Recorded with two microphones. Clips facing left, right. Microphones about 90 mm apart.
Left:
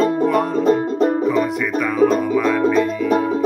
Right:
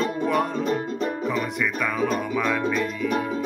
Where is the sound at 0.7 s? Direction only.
40° left (ahead or behind).